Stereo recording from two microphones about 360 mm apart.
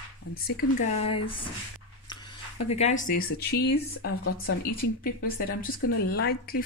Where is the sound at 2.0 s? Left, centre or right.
Centre.